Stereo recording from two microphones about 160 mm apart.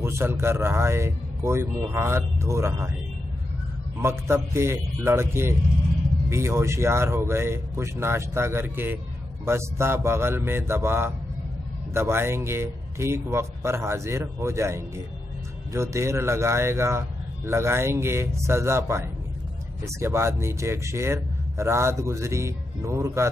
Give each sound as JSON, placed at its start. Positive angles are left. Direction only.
{"t": 0.0, "sound": "speech", "side_deg": -15}
{"t": 4.0, "sound": "speech", "side_deg": -15}